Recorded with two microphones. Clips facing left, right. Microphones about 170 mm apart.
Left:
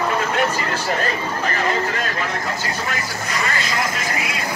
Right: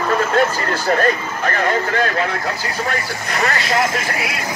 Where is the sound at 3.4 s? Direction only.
60° right (ahead or behind).